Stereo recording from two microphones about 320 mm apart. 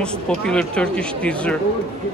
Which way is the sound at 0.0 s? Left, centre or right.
Centre.